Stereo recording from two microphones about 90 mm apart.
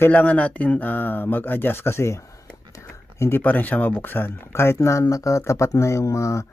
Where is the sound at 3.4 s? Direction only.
20° left (ahead or behind).